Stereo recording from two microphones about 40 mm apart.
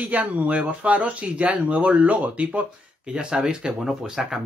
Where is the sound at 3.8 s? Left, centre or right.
Centre.